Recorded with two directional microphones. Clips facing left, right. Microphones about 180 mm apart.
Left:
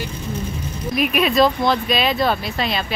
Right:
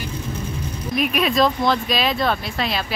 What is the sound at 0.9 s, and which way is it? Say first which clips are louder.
A woman's voice: left 2 dB; centre (ahead or behind).